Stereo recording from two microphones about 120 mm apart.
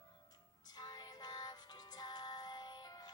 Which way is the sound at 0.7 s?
35° left (ahead or behind).